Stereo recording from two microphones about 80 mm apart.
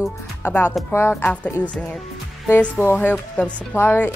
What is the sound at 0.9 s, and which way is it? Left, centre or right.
Music, left.